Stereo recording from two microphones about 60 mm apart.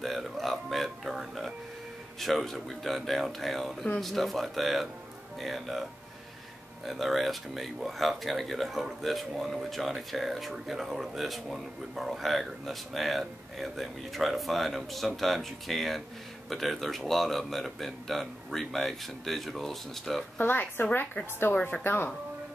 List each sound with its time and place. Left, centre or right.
0.0 s music: centre
2.1 s speech: centre
6.9 s speech: centre
20.3 s a woman's voice: left